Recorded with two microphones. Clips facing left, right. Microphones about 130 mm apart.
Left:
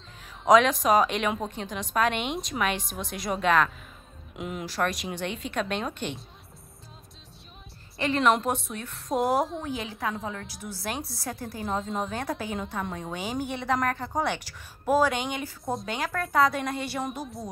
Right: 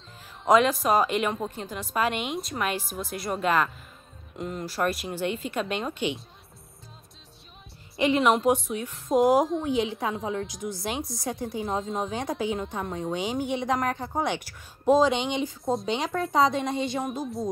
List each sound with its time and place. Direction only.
0.2 s a woman's voice: 5° right (ahead or behind)
8.0 s a woman's voice: 10° right (ahead or behind)
9.7 s a woman's voice: 25° right (ahead or behind)
10.1 s a woman's voice: 5° right (ahead or behind)
10.4 s a woman's voice: 20° right (ahead or behind)
11.3 s a woman's voice: centre (ahead or behind)
13.5 s a woman's voice: 15° right (ahead or behind)
15.6 s a woman's voice: centre (ahead or behind)
15.9 s a woman's voice: 25° right (ahead or behind)
16.6 s a woman's voice: centre (ahead or behind)